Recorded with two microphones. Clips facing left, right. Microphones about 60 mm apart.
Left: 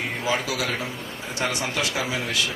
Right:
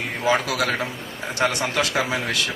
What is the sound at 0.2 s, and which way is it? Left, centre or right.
A man's voice, right.